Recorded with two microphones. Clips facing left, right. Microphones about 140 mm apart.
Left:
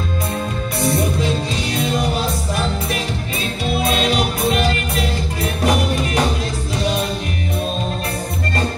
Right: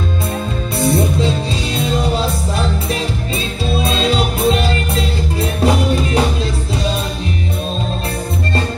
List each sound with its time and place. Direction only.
0.7 s music: 25° right (ahead or behind)